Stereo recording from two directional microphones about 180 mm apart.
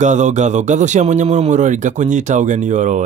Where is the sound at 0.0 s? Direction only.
40° right (ahead or behind).